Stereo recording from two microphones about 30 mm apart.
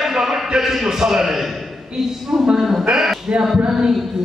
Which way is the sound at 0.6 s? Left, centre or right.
Centre.